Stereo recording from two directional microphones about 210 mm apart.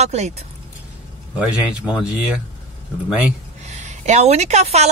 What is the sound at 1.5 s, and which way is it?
Speech, 5° right (ahead or behind).